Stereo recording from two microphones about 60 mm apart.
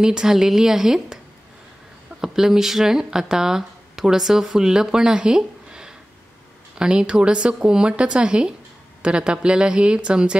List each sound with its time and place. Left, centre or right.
0.0 s a woman's voice: centre
2.2 s a woman's voice: centre